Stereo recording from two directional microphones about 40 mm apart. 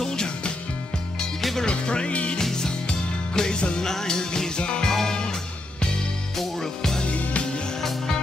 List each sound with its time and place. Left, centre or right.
0.0 s music: centre
1.7 s music: left
2.5 s music: centre
6.3 s music: centre
7.0 s music: left